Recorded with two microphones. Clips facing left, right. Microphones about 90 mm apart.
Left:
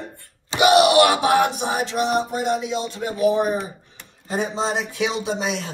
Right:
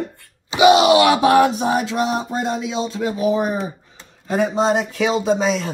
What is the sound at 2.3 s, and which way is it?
Speech, 90° right.